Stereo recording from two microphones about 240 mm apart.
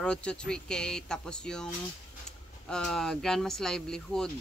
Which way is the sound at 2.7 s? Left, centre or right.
Centre.